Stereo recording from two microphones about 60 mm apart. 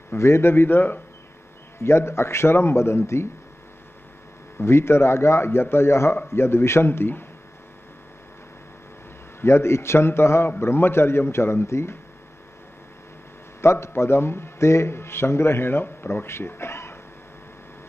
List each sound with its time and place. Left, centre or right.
0.1 s a man's voice: left
4.6 s speech: left
9.4 s speech: left
13.6 s speech: left